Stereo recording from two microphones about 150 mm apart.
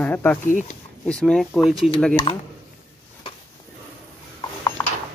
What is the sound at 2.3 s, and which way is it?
Speech, 35° left (ahead or behind).